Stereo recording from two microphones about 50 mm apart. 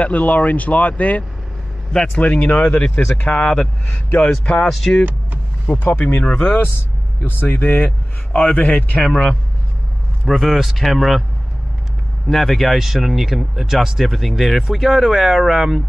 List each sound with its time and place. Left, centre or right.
0.0 s speech: left
3.3 s speech: centre
3.8 s speech: left
4.6 s speech: centre
5.7 s speech: left
6.2 s speech: centre
7.2 s speech: left
9.0 s speech: centre
10.4 s speech: centre
12.3 s speech: centre